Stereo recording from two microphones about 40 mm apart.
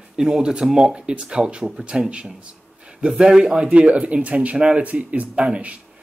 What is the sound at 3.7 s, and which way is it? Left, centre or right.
Speech, right.